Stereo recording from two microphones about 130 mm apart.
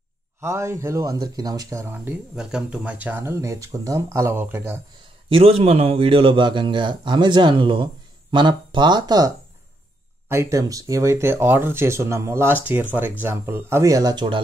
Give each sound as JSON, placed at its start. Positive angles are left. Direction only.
{"t": 0.4, "sound": "speech", "side_deg": -20}
{"t": 2.3, "sound": "speech", "side_deg": -5}
{"t": 5.3, "sound": "a man's voice", "side_deg": -50}
{"t": 10.2, "sound": "speech", "side_deg": -20}